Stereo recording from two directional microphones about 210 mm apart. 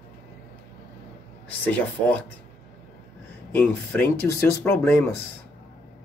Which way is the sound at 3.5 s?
10° left (ahead or behind).